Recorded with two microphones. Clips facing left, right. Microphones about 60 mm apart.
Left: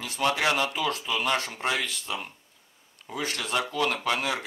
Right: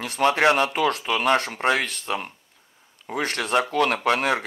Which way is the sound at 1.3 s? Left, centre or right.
Right.